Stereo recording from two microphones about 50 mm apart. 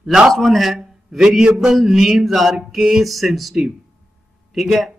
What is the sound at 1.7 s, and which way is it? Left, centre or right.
A man's voice, centre.